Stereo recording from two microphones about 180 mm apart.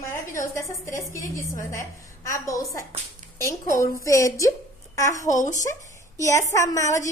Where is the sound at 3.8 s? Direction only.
15° left (ahead or behind).